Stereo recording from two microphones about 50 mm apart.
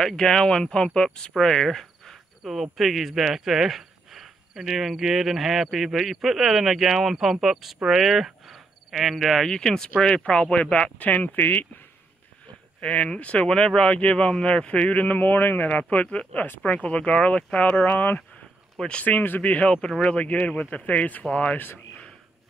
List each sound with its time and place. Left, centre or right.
0.0 s speech: centre
2.4 s speech: centre
9.5 s speech: centre; by 11.4 s left
12.8 s speech: left
18.8 s speech: centre
19.0 s speech: left
19.4 s speech: left